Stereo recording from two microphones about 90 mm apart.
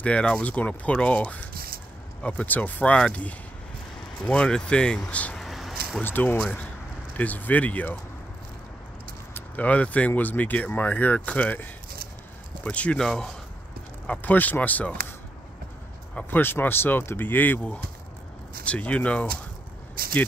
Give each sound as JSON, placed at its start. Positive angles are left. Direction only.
{"t": 0.0, "sound": "speech", "side_deg": 15}
{"t": 5.4, "sound": "a sound", "side_deg": 0}
{"t": 6.0, "sound": "speech", "side_deg": 20}
{"t": 9.3, "sound": "speech", "side_deg": 15}
{"t": 14.0, "sound": "speech", "side_deg": 15}
{"t": 16.2, "sound": "speech", "side_deg": 25}